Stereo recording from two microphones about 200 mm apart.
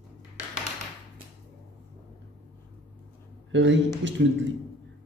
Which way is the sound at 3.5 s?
65° right (ahead or behind).